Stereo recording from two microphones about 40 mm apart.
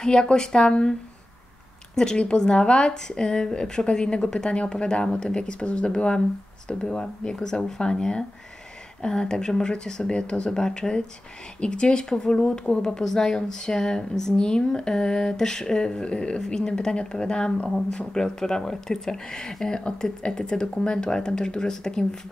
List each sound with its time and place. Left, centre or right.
0.0 s a woman's voice: left
2.0 s a woman's voice: left